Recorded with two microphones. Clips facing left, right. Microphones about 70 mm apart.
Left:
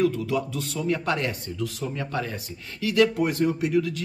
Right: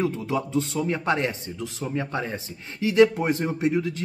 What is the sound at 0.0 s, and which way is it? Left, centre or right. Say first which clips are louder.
Speech: left 2 dB; right.